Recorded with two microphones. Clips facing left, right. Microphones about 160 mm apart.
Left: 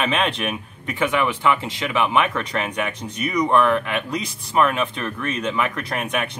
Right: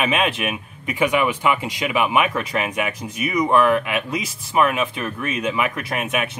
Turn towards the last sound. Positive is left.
turn(degrees=-5)  # may be behind; listen again after turning